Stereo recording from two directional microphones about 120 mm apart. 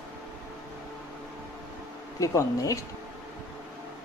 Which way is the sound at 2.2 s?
30° left (ahead or behind).